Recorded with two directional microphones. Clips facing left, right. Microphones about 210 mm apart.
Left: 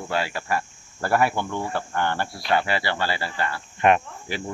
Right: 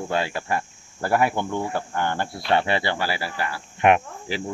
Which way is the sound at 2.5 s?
25° right (ahead or behind).